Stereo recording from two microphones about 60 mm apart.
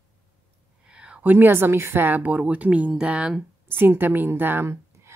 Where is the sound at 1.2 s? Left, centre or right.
Right; by 3.4 s centre.